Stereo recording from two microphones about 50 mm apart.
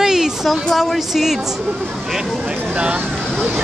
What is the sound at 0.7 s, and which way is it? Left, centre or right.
A woman's voice, centre.